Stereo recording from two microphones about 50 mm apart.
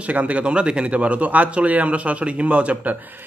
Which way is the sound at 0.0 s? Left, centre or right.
Right.